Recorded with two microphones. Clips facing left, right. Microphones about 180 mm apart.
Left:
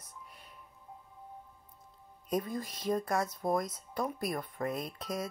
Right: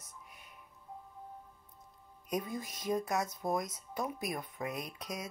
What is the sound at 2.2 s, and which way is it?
Speech, centre (ahead or behind).